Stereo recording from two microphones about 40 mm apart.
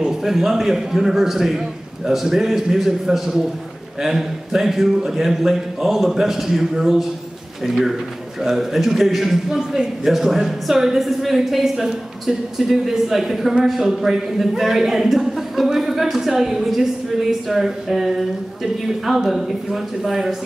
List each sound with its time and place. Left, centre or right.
0.1 s a woman's voice: centre